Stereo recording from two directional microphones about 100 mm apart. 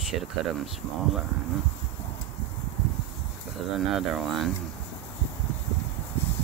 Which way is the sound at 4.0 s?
Centre (ahead or behind).